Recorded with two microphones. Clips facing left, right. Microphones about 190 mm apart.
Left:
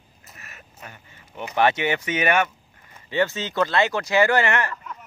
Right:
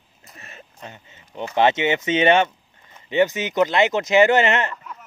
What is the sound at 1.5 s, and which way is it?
Speech, 20° right (ahead or behind).